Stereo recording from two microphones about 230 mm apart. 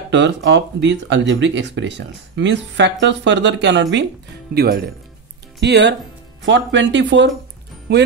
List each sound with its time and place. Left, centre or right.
0.1 s speech: right